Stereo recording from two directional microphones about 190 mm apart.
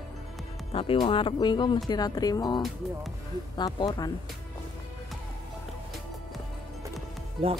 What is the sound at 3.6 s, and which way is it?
Speech, 20° left (ahead or behind).